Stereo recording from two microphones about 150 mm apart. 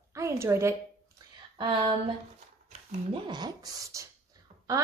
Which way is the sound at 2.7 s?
30° right (ahead or behind).